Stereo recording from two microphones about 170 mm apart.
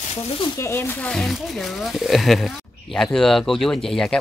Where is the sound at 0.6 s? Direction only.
15° left (ahead or behind).